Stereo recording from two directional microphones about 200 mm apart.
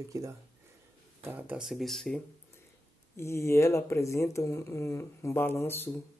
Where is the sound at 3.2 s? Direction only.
15° left (ahead or behind).